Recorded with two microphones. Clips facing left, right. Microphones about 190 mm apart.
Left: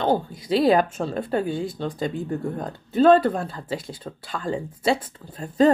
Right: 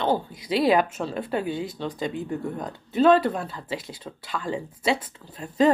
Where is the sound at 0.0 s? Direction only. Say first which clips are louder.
Left 2 dB; 45° left (ahead or behind).